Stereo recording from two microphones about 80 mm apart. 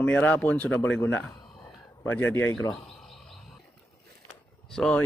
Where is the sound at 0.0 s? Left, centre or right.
Left.